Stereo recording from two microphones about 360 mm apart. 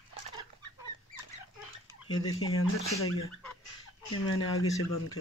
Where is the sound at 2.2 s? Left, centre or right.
Left.